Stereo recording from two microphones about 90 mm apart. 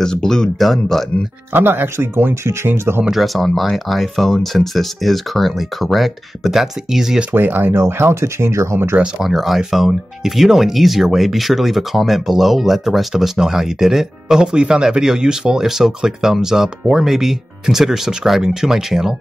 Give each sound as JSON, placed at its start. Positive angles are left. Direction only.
{"t": 0.0, "sound": "speech", "side_deg": 5}
{"t": 1.5, "sound": "speech", "side_deg": -25}
{"t": 3.1, "sound": "speech", "side_deg": 0}
{"t": 7.3, "sound": "speech", "side_deg": -20}
{"t": 8.9, "sound": "speech", "side_deg": -10}